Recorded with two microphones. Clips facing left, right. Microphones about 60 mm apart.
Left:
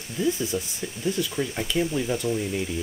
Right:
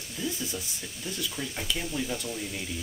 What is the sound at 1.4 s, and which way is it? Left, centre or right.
Speech, centre.